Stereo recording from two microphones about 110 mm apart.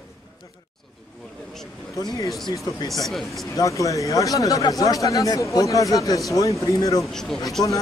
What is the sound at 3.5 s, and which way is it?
Speech, 30° left (ahead or behind).